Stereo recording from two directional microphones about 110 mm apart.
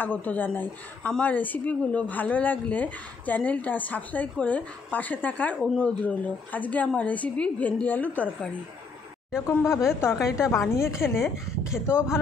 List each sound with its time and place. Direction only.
0.0 s speech: 15° left (ahead or behind)
9.5 s a woman's voice: 20° left (ahead or behind)
10.1 s a woman's voice: 5° right (ahead or behind)
10.8 s a woman's voice: 25° left (ahead or behind)
11.2 s a woman's voice: 5° right (ahead or behind)
11.8 s a woman's voice: 25° left (ahead or behind)